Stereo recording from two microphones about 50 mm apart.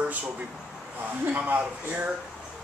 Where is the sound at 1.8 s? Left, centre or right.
Right.